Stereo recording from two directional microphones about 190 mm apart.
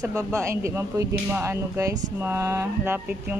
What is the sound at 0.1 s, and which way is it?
Speech, 15° right (ahead or behind).